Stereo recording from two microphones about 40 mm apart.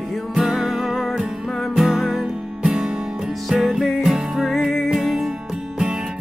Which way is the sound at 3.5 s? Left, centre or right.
Centre.